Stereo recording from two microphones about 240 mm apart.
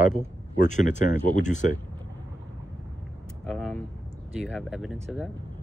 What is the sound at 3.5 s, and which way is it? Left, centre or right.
Vehicle, centre.